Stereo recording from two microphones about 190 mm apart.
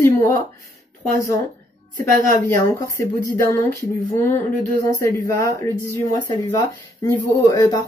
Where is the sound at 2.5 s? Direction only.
15° left (ahead or behind).